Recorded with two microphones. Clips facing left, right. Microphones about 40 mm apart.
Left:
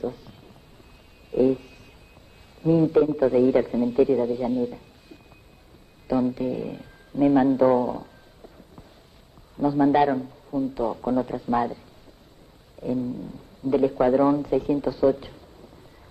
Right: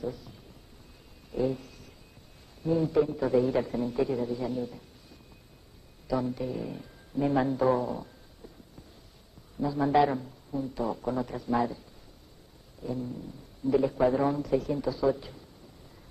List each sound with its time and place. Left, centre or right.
0.0 s a man's voice: left
1.3 s a sound: left
2.6 s a man's voice: left
6.0 s speech: left
9.6 s a man's voice: left
10.6 s speech: left
13.0 s speech: left